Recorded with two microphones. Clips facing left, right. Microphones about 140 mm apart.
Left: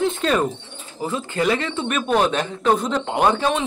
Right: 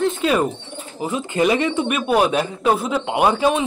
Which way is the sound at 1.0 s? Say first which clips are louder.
Right 3 dB; 20° right (ahead or behind).